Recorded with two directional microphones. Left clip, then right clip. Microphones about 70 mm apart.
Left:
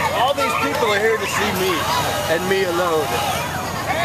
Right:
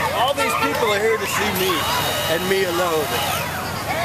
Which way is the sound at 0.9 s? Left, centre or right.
Right.